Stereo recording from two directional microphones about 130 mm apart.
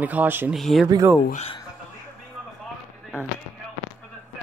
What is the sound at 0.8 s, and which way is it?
Speech, 25° right (ahead or behind).